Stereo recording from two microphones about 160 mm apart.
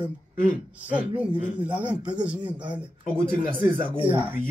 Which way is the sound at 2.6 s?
30° right (ahead or behind).